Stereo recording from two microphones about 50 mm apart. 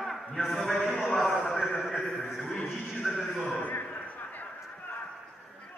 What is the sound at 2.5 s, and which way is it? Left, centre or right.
Neigh, left.